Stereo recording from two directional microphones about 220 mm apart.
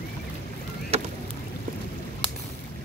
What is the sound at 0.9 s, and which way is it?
Rowboat, 25° right (ahead or behind).